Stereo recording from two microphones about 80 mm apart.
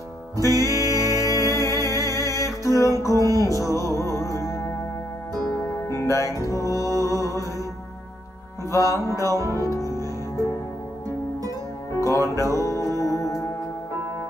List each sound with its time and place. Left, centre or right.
0.4 s music: left
5.9 s music: left
8.7 s music: left
12.0 s music: left